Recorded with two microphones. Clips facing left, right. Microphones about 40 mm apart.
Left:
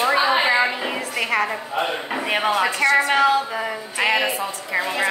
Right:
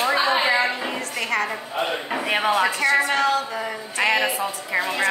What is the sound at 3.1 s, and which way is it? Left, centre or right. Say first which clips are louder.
A woman's voice: left 3 dB; centre.